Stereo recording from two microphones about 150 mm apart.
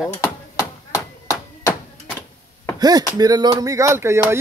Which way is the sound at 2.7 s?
25° right (ahead or behind).